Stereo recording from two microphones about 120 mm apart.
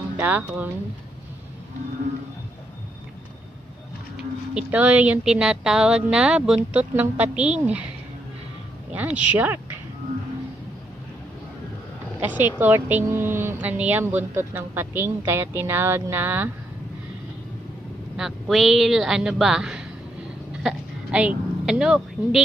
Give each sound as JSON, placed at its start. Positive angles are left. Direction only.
{"t": 0.2, "sound": "a woman's voice", "side_deg": -10}
{"t": 4.6, "sound": "a woman's voice", "side_deg": -10}
{"t": 8.9, "sound": "a woman's voice", "side_deg": -10}
{"t": 12.2, "sound": "a woman's voice", "side_deg": -15}
{"t": 18.1, "sound": "speech", "side_deg": -5}